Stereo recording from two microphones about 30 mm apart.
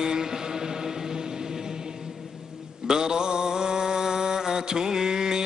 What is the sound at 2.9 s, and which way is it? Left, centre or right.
Mantra, right.